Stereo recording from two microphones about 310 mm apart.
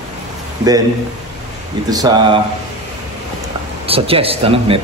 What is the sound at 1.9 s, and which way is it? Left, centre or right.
Speech, centre.